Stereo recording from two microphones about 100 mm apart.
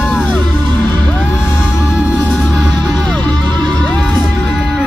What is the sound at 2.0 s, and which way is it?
Music, 10° right (ahead or behind).